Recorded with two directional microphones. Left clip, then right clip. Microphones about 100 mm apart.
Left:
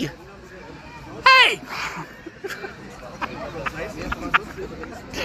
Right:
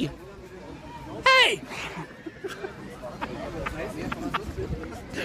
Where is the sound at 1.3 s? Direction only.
20° right (ahead or behind).